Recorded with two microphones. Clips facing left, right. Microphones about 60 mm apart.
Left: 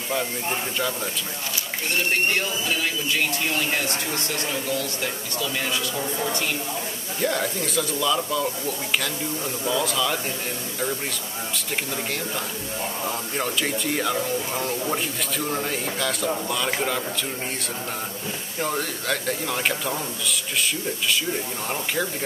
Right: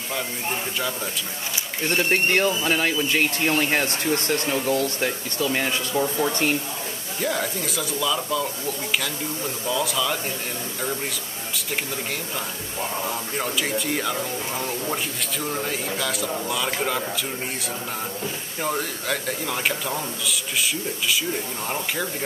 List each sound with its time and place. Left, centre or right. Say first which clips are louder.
0.1 s speech: left 2 dB; centre
1.9 s speech: right 2 dB; right
7.2 s speech: left 1 dB; centre
13.0 s speech: even; centre
18.6 s speech: even; centre